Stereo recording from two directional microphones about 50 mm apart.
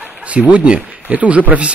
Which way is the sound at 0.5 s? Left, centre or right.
Right.